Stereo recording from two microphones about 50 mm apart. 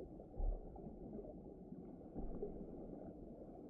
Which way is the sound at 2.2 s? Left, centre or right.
Centre.